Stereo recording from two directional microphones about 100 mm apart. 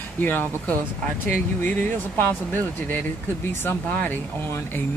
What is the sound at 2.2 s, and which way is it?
Speech, 20° left (ahead or behind).